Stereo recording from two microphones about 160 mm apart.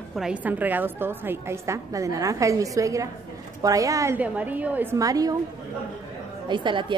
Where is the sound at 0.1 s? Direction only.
5° right (ahead or behind).